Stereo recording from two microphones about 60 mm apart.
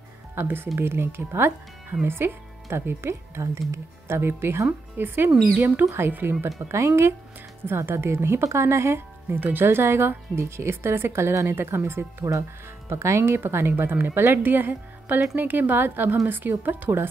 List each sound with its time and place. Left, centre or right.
0.4 s speech: right
4.2 s speech: right